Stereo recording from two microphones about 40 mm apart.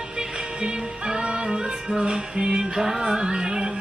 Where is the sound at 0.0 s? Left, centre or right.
Right.